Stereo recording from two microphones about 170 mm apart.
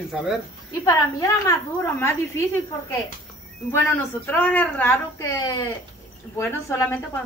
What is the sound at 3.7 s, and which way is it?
A woman's voice, 10° left (ahead or behind).